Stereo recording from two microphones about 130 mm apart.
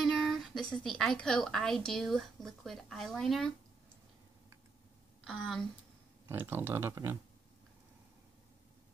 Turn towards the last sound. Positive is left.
turn(degrees=-20)  # may be behind; listen again after turning